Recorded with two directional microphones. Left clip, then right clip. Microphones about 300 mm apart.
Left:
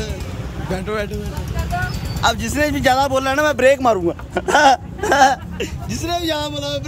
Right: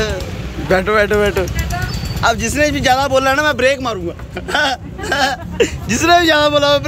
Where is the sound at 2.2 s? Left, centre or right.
Centre.